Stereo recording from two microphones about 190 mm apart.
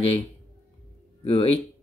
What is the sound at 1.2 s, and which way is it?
Speech, 30° left (ahead or behind).